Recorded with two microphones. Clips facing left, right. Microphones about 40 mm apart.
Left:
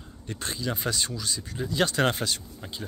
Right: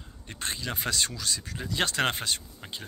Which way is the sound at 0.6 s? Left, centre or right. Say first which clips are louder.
Left 1 dB; right.